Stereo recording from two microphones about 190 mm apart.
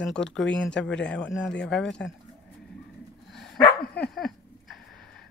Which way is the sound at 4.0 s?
Centre (ahead or behind).